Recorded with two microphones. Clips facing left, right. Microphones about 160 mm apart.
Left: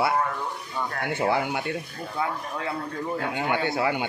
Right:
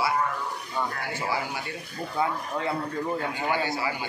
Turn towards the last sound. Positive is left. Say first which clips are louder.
# left 4 dB
turn(degrees=60)  # may be behind; listen again after turning